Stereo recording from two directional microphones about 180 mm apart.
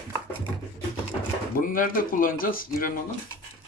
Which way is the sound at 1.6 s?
50° left (ahead or behind).